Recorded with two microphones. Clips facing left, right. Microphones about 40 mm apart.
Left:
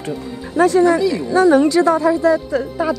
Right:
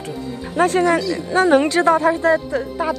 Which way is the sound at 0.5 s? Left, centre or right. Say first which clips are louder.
Left 3 dB; right.